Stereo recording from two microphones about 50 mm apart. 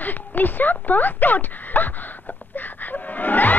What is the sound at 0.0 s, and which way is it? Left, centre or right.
Speech, left.